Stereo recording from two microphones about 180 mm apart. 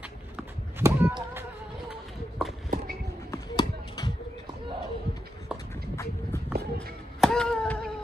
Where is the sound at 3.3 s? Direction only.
20° left (ahead or behind).